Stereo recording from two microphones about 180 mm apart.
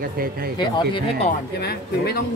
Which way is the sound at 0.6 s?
25° left (ahead or behind).